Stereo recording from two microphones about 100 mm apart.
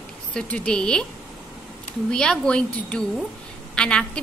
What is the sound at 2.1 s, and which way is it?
A woman's voice, 10° left (ahead or behind).